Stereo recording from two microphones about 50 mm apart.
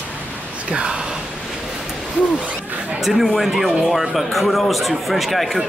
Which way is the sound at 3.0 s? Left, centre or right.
Centre.